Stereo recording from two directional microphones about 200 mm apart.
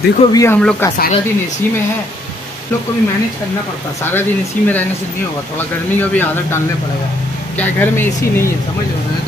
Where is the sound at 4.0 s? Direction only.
10° left (ahead or behind).